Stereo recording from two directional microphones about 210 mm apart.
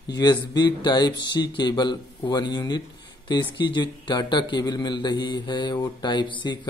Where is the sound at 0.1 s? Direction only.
20° left (ahead or behind).